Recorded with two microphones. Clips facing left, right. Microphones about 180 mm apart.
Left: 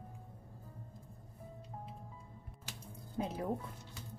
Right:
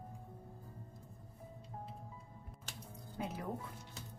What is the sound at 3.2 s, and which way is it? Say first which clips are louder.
Music: left 4 dB; 30° left (ahead or behind).